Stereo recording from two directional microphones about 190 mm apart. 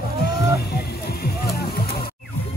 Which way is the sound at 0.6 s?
50° left (ahead or behind).